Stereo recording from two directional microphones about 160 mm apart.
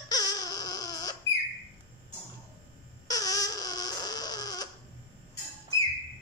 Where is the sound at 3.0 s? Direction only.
25° left (ahead or behind).